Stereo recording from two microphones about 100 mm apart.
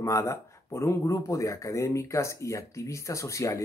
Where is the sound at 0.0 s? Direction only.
30° left (ahead or behind).